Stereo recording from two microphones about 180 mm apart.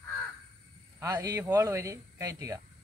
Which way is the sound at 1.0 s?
20° right (ahead or behind).